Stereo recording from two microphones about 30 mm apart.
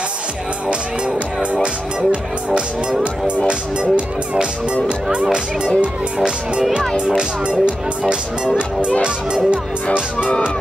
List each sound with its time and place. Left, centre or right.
1.5 s speech: right
3.4 s speech: right
9.0 s speech: right